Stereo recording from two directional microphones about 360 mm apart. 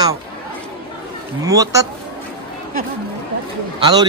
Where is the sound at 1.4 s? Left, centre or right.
Centre.